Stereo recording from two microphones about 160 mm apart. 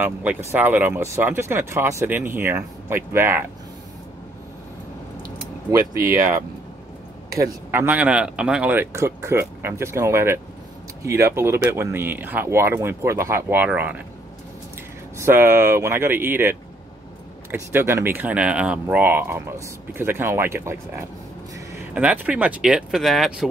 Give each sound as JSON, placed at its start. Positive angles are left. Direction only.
{"t": 0.0, "sound": "speech", "side_deg": -10}
{"t": 5.7, "sound": "speech", "side_deg": -20}
{"t": 7.3, "sound": "speech", "side_deg": -15}
{"t": 15.1, "sound": "speech", "side_deg": -15}